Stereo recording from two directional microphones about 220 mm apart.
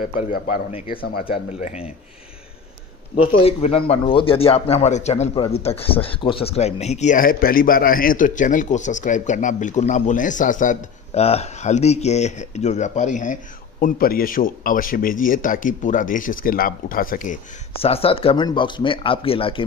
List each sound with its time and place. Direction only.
0.0 s speech: 40° left (ahead or behind)
1.3 s speech: 35° left (ahead or behind)
3.4 s speech: 25° left (ahead or behind)
17.8 s speech: 25° left (ahead or behind)